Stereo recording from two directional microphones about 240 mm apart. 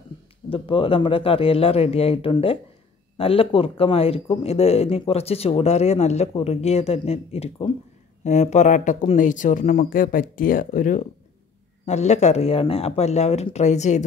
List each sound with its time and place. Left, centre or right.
0.5 s speech: left